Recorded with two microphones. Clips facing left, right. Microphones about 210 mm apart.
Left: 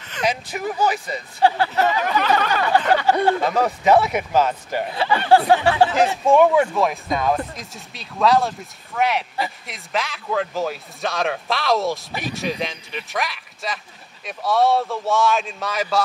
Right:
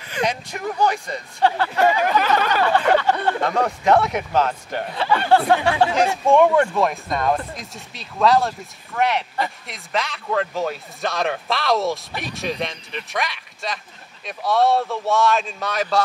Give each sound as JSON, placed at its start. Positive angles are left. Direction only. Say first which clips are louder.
{"t": 0.2, "sound": "speech", "louder": "even", "side_deg": 5}
{"t": 1.8, "sound": "a sound", "louder": "right 4 dB", "side_deg": -10}
{"t": 3.0, "sound": "speech", "louder": "left 3 dB", "side_deg": 10}